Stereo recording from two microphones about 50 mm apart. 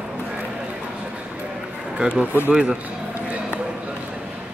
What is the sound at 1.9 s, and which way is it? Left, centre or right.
Speech, right.